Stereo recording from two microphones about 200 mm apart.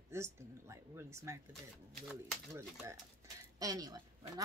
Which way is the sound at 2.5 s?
15° right (ahead or behind).